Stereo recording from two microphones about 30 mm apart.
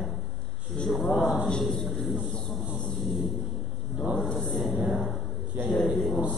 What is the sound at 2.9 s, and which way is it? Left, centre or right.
Thunder, centre.